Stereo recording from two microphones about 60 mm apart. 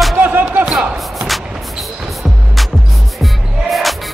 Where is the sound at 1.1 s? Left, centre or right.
Centre.